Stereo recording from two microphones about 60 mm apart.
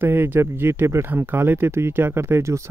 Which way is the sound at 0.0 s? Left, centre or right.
Right.